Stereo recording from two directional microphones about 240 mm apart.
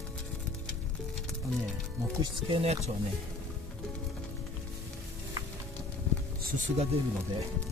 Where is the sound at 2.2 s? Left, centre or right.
Right.